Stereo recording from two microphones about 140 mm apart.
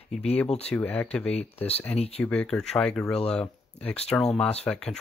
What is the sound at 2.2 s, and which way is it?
Speech, 10° left (ahead or behind).